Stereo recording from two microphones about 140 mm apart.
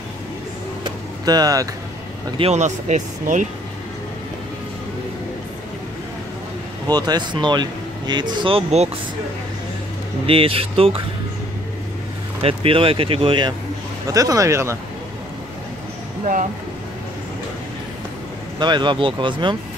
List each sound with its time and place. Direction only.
0.8 s vehicle: 30° right (ahead or behind)
2.3 s speech: 50° right (ahead or behind)
6.9 s speech: 30° right (ahead or behind); by 8.9 s 45° right (ahead or behind)
10.2 s speech: 40° right (ahead or behind)
12.4 s speech: 40° right (ahead or behind)
14.1 s speech: 25° right (ahead or behind)
18.6 s speech: 35° right (ahead or behind)